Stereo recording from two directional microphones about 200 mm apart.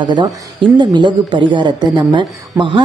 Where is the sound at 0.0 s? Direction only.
20° right (ahead or behind).